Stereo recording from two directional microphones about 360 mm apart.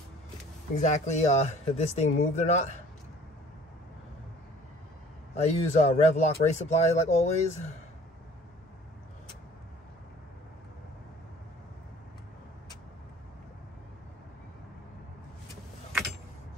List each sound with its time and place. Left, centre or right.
0.7 s speech: centre
5.3 s speech: centre